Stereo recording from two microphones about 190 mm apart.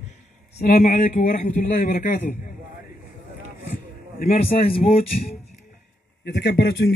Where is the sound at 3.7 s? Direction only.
45° left (ahead or behind).